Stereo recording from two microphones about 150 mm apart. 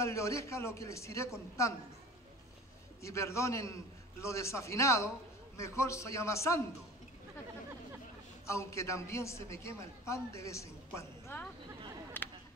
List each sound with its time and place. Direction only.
0.0 s a man's voice: 20° left (ahead or behind)
3.0 s a man's voice: 20° left (ahead or behind)
8.5 s a man's voice: 20° left (ahead or behind)
12.2 s a sound: 15° left (ahead or behind)